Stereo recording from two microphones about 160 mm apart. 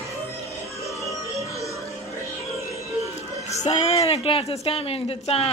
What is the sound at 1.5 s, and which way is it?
Music, 20° left (ahead or behind).